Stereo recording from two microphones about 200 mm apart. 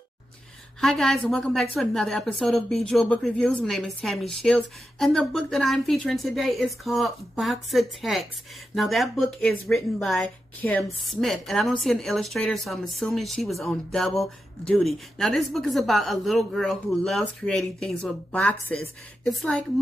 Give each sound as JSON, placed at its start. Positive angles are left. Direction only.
{"t": 0.7, "sound": "a woman's voice", "side_deg": 0}